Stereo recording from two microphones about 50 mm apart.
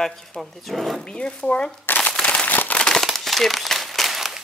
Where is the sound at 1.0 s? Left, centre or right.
Left.